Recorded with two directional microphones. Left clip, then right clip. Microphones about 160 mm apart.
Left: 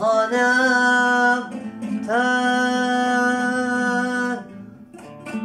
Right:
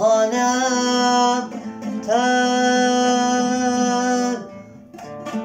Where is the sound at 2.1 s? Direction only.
10° right (ahead or behind).